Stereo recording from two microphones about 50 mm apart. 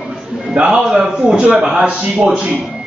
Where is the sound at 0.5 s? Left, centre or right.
Centre.